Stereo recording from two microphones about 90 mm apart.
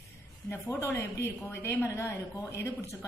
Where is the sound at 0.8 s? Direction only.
30° left (ahead or behind).